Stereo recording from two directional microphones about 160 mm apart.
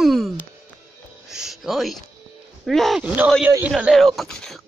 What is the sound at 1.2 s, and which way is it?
Music, 5° right (ahead or behind).